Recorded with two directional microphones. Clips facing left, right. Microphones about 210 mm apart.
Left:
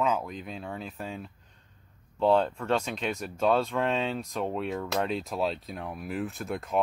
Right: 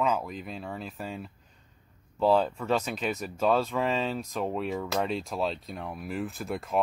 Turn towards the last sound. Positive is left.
turn(degrees=0)  # may be behind; listen again after turning